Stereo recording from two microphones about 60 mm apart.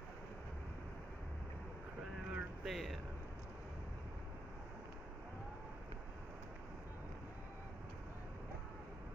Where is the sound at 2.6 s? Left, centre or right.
Centre.